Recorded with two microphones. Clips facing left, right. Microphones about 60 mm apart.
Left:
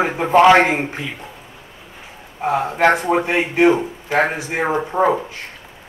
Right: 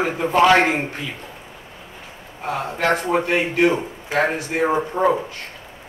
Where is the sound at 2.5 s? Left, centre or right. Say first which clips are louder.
Left 5 dB; left.